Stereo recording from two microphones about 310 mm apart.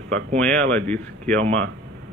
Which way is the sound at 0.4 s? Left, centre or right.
Centre.